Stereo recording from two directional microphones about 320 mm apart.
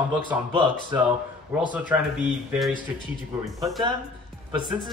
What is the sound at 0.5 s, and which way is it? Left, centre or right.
Speech, centre.